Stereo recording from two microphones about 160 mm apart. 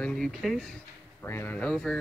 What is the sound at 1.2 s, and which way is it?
Speech, 15° left (ahead or behind).